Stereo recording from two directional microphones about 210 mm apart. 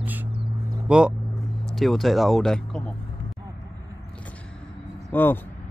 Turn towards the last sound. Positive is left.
turn(degrees=10)  # may be behind; listen again after turning